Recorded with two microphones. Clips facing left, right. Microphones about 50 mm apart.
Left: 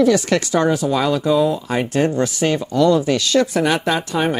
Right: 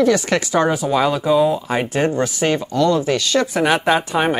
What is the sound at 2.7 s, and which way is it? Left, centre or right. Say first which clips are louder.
Speech: left 3 dB; centre.